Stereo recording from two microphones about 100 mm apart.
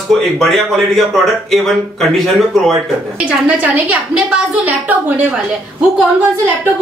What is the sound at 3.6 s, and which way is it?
A woman's voice, 15° right (ahead or behind).